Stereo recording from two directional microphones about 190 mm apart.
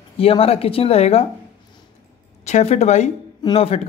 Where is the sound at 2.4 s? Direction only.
35° left (ahead or behind).